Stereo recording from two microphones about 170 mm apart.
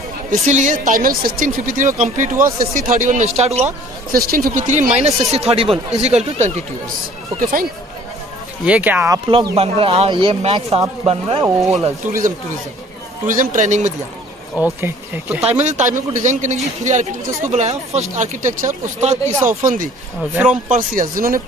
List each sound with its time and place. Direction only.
0.3 s speech: 45° right (ahead or behind)
4.1 s speech: 60° right (ahead or behind); by 6.5 s 40° right (ahead or behind)
8.6 s speech: 10° right (ahead or behind)
9.3 s speech: 30° right (ahead or behind)
12.1 s speech: 50° right (ahead or behind)
14.6 s speech: 10° right (ahead or behind)
15.4 s speech: 45° right (ahead or behind)
20.2 s speech: 5° right (ahead or behind)
20.7 s speech: 50° right (ahead or behind)